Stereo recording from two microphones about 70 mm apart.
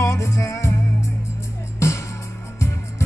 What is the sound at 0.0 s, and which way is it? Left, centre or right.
Music, left.